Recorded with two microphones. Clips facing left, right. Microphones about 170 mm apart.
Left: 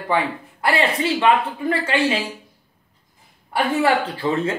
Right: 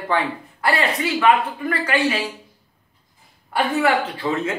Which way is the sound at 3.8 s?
30° left (ahead or behind).